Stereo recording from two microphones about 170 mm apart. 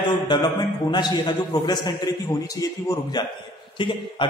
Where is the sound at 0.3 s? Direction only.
25° left (ahead or behind).